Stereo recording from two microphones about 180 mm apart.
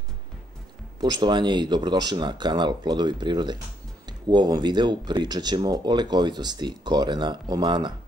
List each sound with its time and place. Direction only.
1.0 s speech: 25° right (ahead or behind)